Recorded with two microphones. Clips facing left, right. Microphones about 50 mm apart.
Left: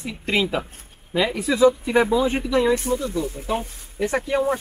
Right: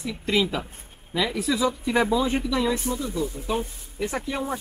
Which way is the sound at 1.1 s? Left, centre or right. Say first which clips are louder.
Left 3 dB; left.